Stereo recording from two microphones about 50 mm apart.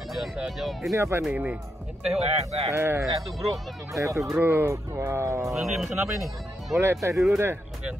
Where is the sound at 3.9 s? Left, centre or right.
Right.